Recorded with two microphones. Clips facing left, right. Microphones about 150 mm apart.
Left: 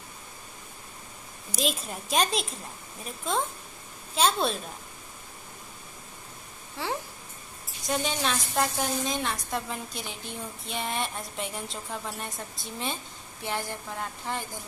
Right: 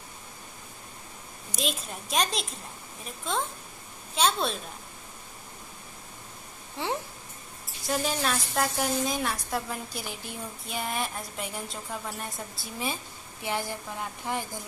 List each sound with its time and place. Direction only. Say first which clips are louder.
1.6 s a woman's voice: left 2 dB; centre (ahead or behind)
4.1 s a woman's voice: left 1 dB; centre (ahead or behind)
6.8 s speech: right 1 dB; 20° right (ahead or behind)
7.8 s a woman's voice: even; centre (ahead or behind)